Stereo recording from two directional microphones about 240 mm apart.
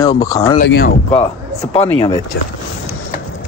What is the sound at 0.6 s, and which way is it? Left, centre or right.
Speech, left.